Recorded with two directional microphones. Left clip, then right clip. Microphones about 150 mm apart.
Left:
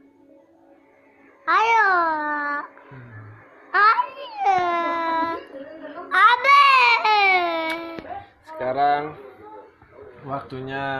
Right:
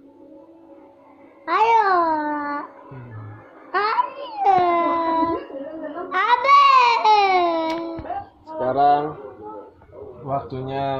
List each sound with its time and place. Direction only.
1.4 s babbling: 20° right (ahead or behind)
3.7 s babbling: 20° right (ahead or behind)
6.0 s a sound: 15° right (ahead or behind)
8.5 s music: 5° right (ahead or behind)
10.5 s speech: 5° left (ahead or behind)